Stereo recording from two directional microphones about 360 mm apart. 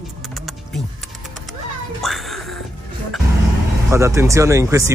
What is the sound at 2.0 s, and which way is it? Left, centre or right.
Music, centre.